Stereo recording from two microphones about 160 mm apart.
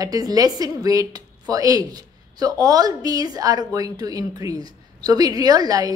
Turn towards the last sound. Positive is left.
turn(degrees=-25)  # may be behind; listen again after turning